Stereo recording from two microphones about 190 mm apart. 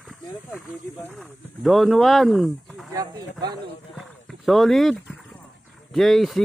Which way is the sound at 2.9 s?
20° right (ahead or behind).